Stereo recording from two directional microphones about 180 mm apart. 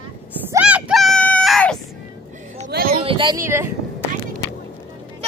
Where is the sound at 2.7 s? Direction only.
55° right (ahead or behind).